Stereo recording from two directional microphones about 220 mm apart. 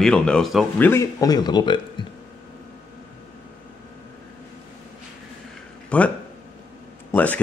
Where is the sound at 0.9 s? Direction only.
15° left (ahead or behind).